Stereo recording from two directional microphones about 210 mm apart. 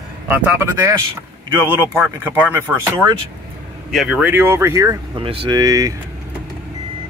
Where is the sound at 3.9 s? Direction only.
5° right (ahead or behind).